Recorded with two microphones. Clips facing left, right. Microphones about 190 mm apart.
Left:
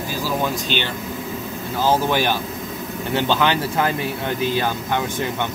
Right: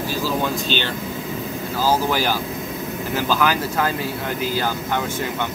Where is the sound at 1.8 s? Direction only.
20° left (ahead or behind).